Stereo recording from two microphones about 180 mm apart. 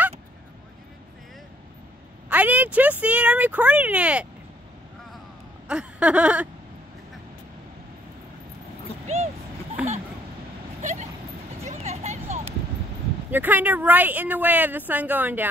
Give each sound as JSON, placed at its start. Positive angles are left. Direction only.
{"t": 2.2, "sound": "a woman's voice", "side_deg": -10}
{"t": 5.7, "sound": "a sound", "side_deg": -5}
{"t": 9.0, "sound": "vehicle", "side_deg": -35}
{"t": 10.8, "sound": "vehicle", "side_deg": -40}
{"t": 11.6, "sound": "a sound", "side_deg": -35}
{"t": 13.3, "sound": "a woman's voice", "side_deg": -10}